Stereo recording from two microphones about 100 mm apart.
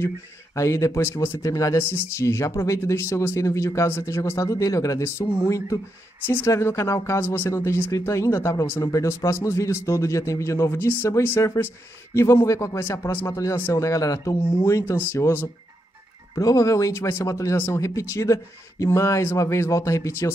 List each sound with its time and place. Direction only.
0.6 s speech: 30° left (ahead or behind)
6.2 s speech: 20° left (ahead or behind)
16.3 s speech: 35° left (ahead or behind)